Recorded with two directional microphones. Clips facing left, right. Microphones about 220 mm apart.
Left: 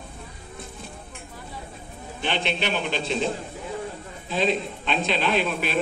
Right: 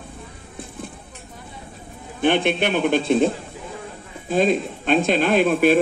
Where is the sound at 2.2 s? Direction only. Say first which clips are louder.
Right 8 dB; 55° right (ahead or behind).